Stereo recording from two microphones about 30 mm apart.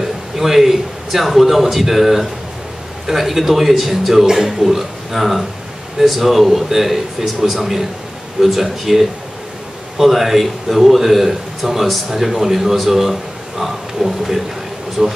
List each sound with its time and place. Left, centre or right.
0.0 s a man's voice: centre
10.0 s a man's voice: centre
15.0 s speech: right